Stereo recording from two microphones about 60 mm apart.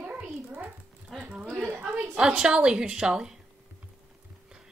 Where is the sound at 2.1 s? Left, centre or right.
Centre.